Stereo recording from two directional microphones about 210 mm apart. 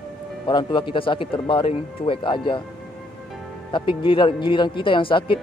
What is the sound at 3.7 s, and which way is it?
Speech, 25° left (ahead or behind).